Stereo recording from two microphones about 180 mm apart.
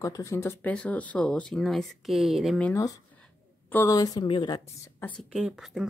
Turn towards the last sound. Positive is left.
turn(degrees=0)  # may be behind; listen again after turning